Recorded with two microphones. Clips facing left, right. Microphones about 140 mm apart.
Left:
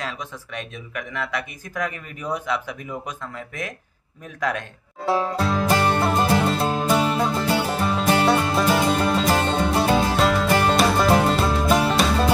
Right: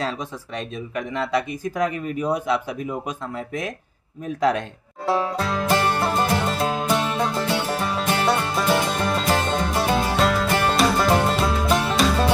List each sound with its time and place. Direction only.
0.6 s speech: 30° right (ahead or behind)
5.0 s music: centre (ahead or behind)